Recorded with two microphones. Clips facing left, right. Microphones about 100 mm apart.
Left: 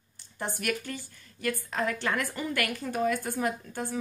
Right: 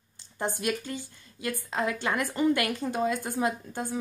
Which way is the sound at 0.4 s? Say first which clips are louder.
Right 2 dB; 20° right (ahead or behind).